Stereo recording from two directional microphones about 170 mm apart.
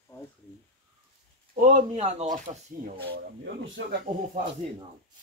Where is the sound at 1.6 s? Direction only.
45° right (ahead or behind).